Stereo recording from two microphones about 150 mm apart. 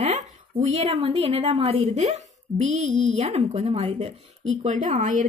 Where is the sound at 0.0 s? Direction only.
50° right (ahead or behind).